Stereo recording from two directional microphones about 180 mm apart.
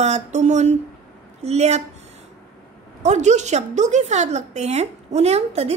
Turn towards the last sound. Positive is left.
turn(degrees=-35)  # may be behind; listen again after turning